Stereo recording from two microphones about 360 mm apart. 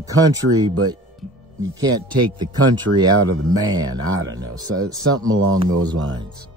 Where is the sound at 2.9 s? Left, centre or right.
Right.